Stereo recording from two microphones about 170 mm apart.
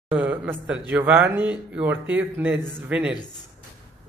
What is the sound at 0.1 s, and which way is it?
Speech, 10° right (ahead or behind).